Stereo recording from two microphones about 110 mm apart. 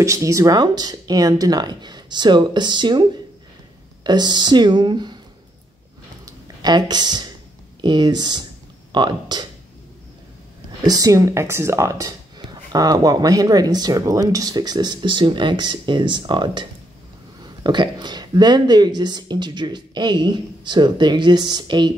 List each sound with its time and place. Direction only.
0.0 s speech: 30° right (ahead or behind)
6.2 s a sound: 40° right (ahead or behind)
7.8 s speech: 40° right (ahead or behind)
10.9 s speech: 35° right (ahead or behind)
17.6 s speech: 45° right (ahead or behind)